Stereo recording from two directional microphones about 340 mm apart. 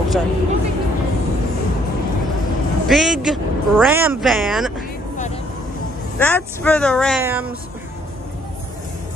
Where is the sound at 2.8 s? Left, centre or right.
Centre.